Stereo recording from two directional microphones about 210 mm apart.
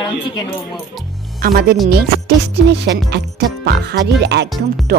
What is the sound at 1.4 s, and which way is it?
Speech, 45° right (ahead or behind).